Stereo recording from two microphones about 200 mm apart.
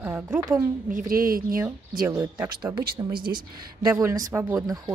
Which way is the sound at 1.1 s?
45° right (ahead or behind).